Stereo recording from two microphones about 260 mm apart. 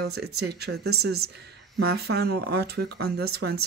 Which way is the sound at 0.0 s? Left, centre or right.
Right.